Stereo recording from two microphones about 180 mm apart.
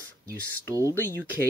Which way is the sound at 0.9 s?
10° left (ahead or behind).